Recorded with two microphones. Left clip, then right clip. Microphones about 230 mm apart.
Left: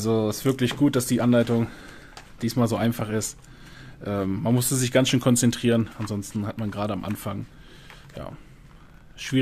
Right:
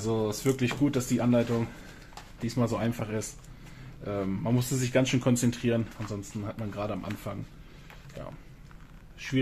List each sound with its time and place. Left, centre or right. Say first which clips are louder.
0.0 s speech: left 5 dB; left